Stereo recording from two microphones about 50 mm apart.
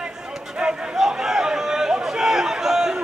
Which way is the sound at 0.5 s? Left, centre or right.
Centre.